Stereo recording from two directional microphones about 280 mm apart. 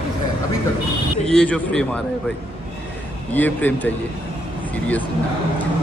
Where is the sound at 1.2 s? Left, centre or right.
Centre.